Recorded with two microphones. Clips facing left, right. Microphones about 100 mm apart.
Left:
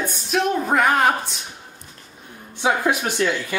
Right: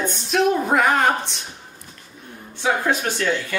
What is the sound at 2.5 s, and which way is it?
Speech, 15° left (ahead or behind).